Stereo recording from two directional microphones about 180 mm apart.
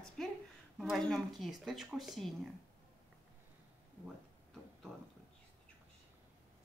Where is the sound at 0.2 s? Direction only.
Centre (ahead or behind).